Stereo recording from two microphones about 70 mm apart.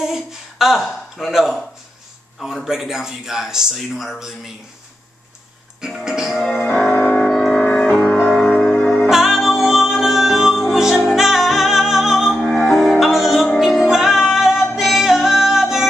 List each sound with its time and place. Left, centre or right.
0.0 s speech: centre
5.9 s music: centre
6.7 s music: centre
7.2 s music: centre
8.2 s music: centre
9.1 s music: centre